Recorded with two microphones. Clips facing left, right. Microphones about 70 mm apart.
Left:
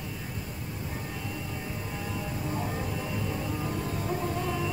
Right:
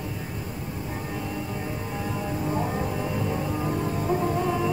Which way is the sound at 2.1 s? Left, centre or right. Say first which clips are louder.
Right 6 dB; right.